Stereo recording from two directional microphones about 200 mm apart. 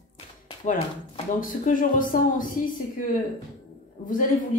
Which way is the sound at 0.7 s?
40° left (ahead or behind).